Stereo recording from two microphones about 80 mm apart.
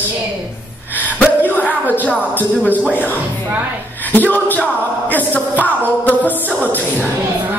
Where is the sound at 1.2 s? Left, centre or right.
Centre.